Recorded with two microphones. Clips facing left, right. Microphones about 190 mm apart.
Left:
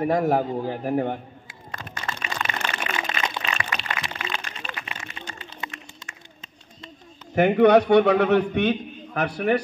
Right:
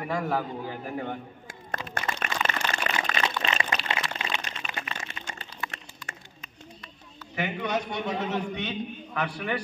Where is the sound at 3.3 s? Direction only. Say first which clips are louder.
Right 1 dB; 25° right (ahead or behind).